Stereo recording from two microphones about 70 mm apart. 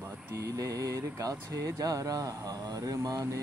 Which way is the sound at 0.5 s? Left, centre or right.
Right.